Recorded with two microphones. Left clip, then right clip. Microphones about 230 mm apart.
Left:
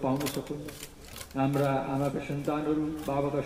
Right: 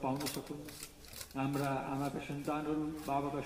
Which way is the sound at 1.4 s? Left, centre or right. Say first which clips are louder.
Left 9 dB; right.